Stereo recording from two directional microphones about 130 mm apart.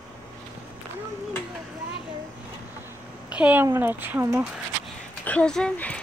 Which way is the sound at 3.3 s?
10° right (ahead or behind).